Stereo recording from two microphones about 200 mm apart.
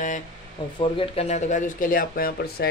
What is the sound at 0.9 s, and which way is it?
Speech, 30° left (ahead or behind).